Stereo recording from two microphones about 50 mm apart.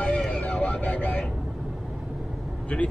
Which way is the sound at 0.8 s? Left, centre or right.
Left.